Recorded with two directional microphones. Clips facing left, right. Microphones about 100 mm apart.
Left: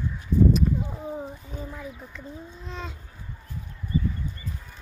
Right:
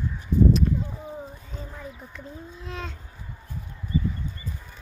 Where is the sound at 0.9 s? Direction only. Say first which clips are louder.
Left 3 dB; 15° left (ahead or behind).